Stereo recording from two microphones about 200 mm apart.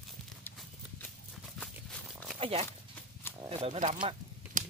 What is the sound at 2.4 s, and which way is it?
Speech, 30° right (ahead or behind).